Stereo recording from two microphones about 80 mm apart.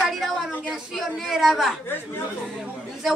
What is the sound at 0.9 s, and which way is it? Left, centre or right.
Speech, centre.